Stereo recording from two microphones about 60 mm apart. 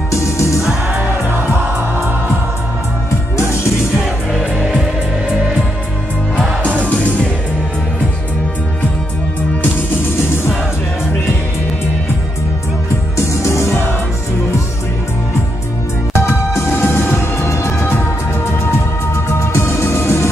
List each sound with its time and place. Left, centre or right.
6.8 s music: left
13.2 s music: left
16.1 s music: left
19.5 s music: left